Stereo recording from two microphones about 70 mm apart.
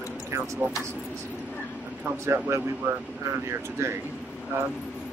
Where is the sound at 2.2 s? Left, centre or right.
Right.